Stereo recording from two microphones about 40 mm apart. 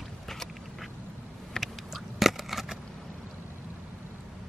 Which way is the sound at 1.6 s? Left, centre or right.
Centre.